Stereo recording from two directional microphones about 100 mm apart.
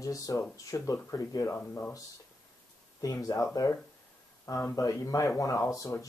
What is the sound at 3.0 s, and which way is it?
Speech, 35° left (ahead or behind).